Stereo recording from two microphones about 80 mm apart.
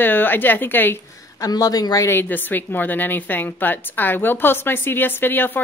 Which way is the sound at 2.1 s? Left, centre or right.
Left.